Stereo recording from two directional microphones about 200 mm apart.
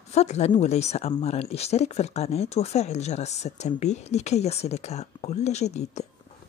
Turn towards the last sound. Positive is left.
turn(degrees=35)  # may be behind; listen again after turning